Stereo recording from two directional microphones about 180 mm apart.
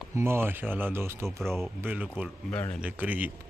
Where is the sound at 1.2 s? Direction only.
Centre (ahead or behind).